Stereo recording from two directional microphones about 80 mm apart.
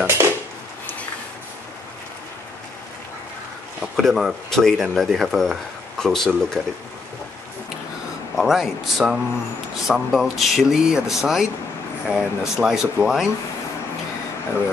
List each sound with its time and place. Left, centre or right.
0.0 s dishes: right
3.8 s speech: centre
8.4 s speech: centre